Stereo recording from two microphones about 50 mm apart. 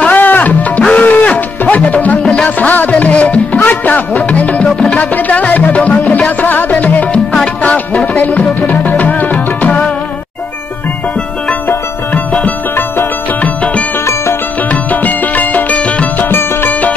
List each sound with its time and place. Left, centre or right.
0.0 s music: left
2.7 s music: left
12.1 s music: left
14.7 s music: left
16.3 s music: left